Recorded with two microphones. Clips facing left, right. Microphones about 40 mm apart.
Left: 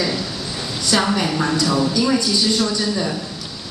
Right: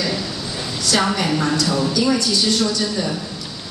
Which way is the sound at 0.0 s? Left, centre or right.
Centre.